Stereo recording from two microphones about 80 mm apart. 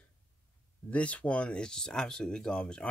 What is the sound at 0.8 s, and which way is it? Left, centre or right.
Speech, centre.